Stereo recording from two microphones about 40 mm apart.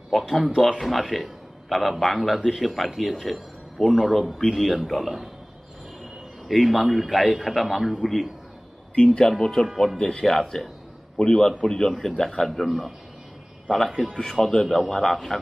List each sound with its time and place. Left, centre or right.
0.1 s a man's voice: centre
6.4 s a man's voice: centre
8.9 s speech: left
9.4 s a man's voice: centre
12.4 s a man's voice: centre